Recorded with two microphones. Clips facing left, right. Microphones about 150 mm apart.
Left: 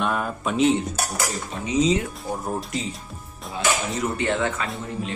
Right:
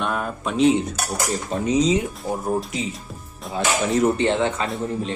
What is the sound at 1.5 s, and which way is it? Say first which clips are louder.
Speech: right 7 dB; 40° right (ahead or behind).